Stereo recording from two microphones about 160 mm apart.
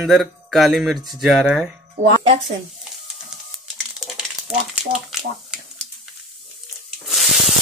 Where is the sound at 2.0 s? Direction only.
50° right (ahead or behind).